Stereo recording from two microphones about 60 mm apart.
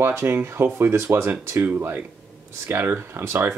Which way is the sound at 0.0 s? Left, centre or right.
Right.